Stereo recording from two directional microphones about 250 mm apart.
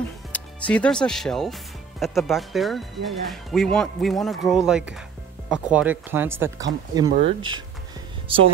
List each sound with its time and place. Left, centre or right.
0.3 s speech: centre; by 8.4 s right